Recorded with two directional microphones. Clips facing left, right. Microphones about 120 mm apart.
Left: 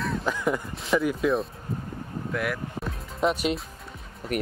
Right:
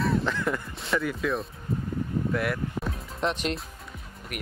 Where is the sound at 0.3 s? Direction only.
10° left (ahead or behind).